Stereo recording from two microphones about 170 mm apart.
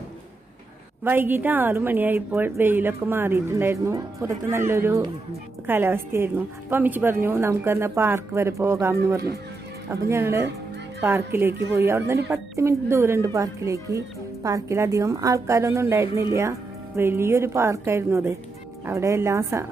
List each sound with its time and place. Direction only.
1.0 s speech: 10° right (ahead or behind)